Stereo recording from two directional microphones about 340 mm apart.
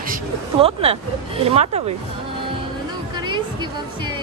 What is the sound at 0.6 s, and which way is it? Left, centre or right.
A woman's voice, centre.